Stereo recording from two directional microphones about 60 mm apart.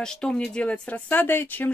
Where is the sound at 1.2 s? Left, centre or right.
Left.